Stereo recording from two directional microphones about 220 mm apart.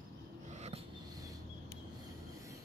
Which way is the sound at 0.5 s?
30° right (ahead or behind).